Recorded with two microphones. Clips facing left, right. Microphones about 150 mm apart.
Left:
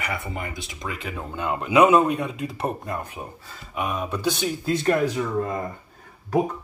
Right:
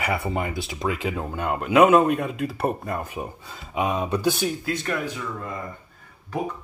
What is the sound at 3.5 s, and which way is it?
Speech, 20° right (ahead or behind).